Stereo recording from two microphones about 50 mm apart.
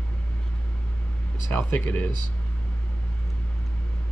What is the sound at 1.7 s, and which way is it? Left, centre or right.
Speech, left.